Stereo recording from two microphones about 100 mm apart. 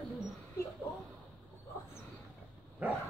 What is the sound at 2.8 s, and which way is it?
Dog, 15° right (ahead or behind).